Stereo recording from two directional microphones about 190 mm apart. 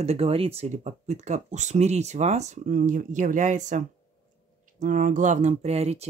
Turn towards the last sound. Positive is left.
turn(degrees=-35)  # may be behind; listen again after turning